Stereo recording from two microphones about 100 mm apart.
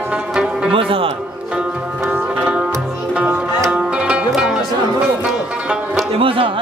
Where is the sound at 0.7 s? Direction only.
65° right (ahead or behind).